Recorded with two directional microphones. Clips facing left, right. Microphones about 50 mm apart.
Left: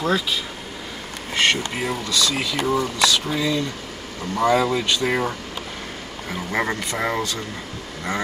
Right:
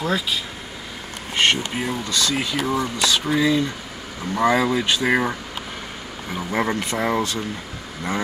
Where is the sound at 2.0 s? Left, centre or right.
Right.